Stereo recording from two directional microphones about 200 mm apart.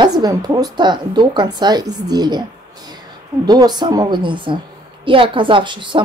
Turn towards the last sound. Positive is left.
turn(degrees=-25)  # may be behind; listen again after turning